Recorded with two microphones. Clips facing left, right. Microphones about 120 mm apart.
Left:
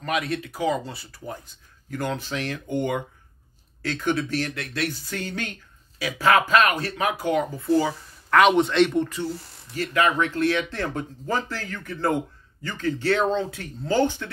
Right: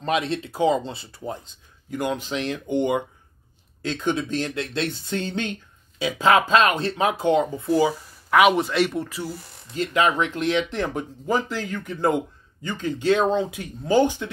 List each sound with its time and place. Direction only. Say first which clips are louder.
0.0 s speech: right 3 dB; 25° right (ahead or behind); by 9.3 s 5° right (ahead or behind)
9.8 s speech: right 1 dB; 20° right (ahead or behind)